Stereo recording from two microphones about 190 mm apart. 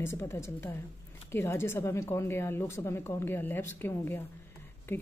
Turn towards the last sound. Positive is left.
turn(degrees=10)  # may be behind; listen again after turning